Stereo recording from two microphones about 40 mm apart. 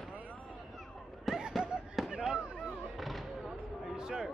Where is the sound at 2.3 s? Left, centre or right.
Right.